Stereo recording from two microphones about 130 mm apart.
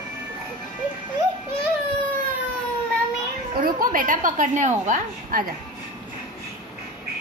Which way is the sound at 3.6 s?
90° right.